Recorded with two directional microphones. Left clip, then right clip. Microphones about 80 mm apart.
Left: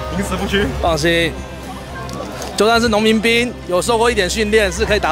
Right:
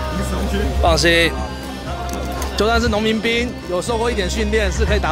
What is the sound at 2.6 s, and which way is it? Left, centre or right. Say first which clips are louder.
Speech: left 4 dB; centre.